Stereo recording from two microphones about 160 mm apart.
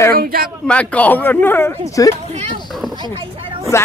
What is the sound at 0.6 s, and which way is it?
A man's voice, 10° left (ahead or behind).